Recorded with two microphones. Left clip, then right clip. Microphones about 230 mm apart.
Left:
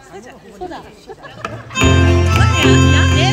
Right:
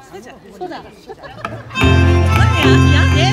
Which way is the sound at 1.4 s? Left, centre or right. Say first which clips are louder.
Left 1 dB; left.